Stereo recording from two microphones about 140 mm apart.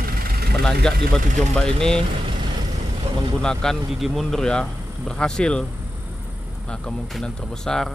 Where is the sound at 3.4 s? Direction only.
Centre (ahead or behind).